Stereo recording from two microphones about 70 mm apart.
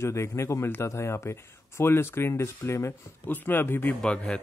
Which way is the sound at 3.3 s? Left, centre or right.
Left.